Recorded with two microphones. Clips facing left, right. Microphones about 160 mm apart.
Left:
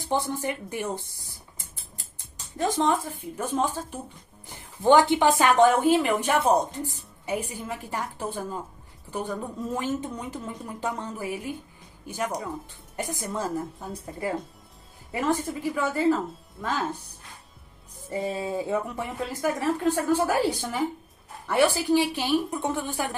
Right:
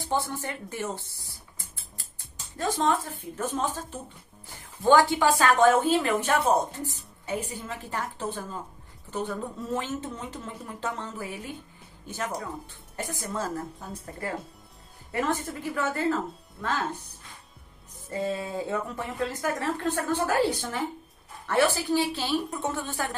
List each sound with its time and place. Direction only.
0.0 s a woman's voice: 15° left (ahead or behind)
15.0 s a woman's voice: 5° left (ahead or behind)
18.1 s a woman's voice: 15° left (ahead or behind)